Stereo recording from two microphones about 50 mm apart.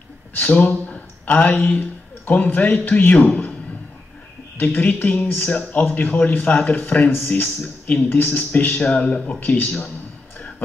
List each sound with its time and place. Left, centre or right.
0.4 s a man's voice: left
4.6 s a man's voice: left
9.4 s a man's voice: left